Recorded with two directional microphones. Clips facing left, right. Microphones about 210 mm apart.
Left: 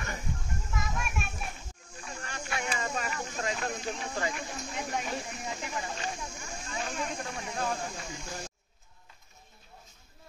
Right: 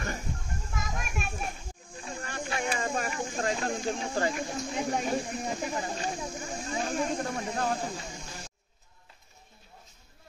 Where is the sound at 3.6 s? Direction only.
30° right (ahead or behind).